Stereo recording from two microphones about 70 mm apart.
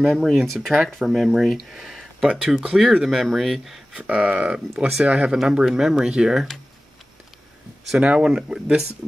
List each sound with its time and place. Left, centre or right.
0.0 s speech: centre
2.2 s speech: centre
8.0 s speech: centre